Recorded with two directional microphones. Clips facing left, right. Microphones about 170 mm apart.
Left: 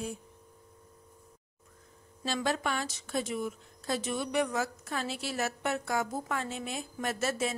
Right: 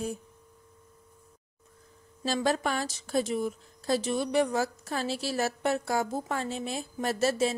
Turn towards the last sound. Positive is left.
turn(degrees=-30)  # may be behind; listen again after turning